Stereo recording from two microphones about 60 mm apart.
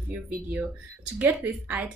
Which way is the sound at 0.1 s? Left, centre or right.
Right.